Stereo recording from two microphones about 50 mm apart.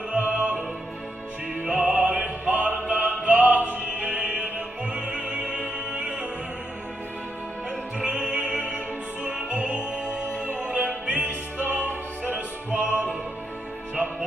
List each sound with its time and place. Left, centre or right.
0.1 s music: right
1.6 s opera: right
8.0 s music: right